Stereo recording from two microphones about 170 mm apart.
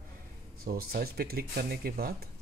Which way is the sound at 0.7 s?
60° right (ahead or behind).